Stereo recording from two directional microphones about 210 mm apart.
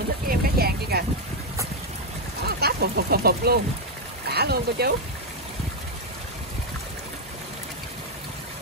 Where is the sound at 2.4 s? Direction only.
50° right (ahead or behind).